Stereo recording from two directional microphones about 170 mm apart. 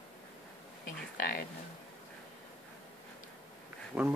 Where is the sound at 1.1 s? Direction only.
60° left (ahead or behind).